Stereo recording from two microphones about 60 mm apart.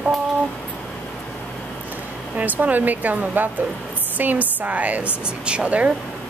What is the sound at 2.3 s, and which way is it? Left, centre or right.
A woman's voice, right.